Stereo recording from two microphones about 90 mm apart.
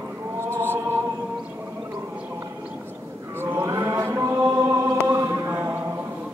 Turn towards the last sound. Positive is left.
turn(degrees=-30)  # may be behind; listen again after turning